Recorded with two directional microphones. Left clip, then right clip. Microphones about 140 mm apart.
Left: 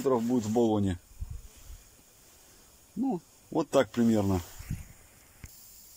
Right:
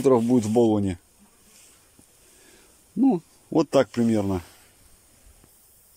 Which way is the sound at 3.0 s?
20° right (ahead or behind).